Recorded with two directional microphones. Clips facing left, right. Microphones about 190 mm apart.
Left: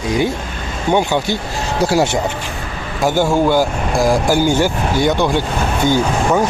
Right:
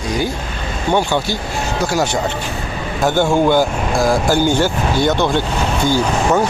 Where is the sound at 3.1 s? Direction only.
5° left (ahead or behind).